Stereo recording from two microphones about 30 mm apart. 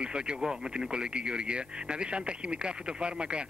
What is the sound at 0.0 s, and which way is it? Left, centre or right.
Speech, right.